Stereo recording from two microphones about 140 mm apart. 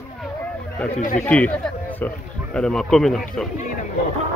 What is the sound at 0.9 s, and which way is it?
Speech, 60° left (ahead or behind).